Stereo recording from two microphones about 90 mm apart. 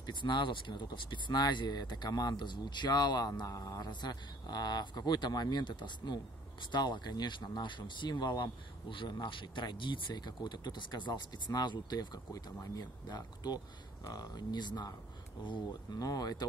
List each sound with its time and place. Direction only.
0.0 s speech: 60° left (ahead or behind); by 3.9 s 40° left (ahead or behind)
3.9 s speech: 50° left (ahead or behind)